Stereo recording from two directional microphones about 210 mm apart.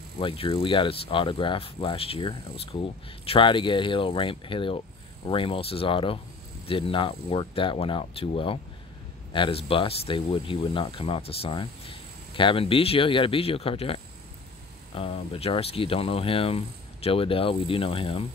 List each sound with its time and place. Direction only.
0.2 s speech: 25° left (ahead or behind)